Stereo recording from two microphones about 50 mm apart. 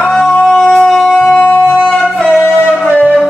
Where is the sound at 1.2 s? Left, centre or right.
Left.